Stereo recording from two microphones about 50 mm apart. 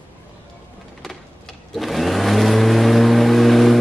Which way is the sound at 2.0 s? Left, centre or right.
Centre.